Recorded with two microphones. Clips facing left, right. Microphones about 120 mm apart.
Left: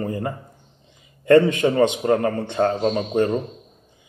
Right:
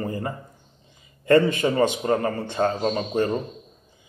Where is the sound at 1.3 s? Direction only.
20° left (ahead or behind).